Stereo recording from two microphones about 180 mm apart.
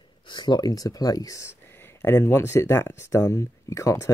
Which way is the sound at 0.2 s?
25° left (ahead or behind).